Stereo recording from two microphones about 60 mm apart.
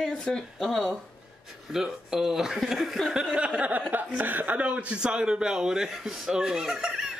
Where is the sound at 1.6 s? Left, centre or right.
Centre.